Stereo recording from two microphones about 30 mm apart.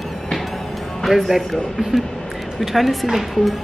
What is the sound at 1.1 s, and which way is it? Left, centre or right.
Speech, centre.